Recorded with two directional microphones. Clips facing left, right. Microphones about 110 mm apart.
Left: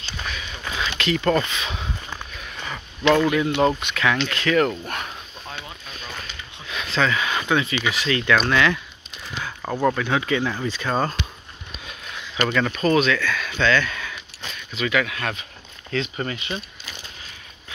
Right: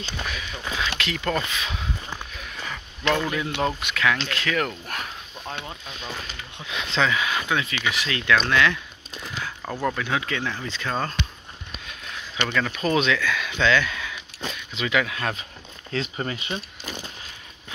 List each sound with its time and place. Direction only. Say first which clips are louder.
0.3 s speech: even; centre (ahead or behind)
2.7 s a sound: left 6 dB; 10° left (ahead or behind)
3.2 s speech: left 6 dB; centre (ahead or behind)
5.7 s boat: right 2 dB; 20° right (ahead or behind)
6.7 s speech: left 1 dB; 20° right (ahead or behind)
7.1 s speech: left 2 dB; 5° right (ahead or behind)
11.9 s a sound: left 1 dB; 5° left (ahead or behind)
12.7 s speech: left 2 dB; 10° right (ahead or behind)
14.7 s speech: left 2 dB; 20° right (ahead or behind)